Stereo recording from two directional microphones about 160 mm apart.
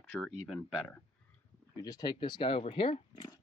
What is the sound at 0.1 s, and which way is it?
Speech, 15° left (ahead or behind).